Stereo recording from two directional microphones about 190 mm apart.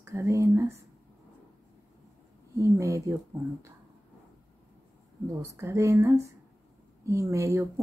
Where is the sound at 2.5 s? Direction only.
15° right (ahead or behind).